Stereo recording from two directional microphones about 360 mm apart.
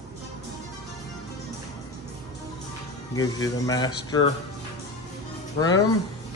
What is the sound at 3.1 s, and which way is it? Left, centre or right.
Speech, centre.